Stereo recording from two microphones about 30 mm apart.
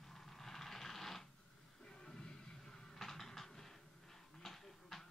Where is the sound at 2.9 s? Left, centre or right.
Centre.